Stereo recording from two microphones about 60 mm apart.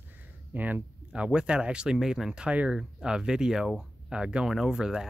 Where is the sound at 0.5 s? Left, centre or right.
Right.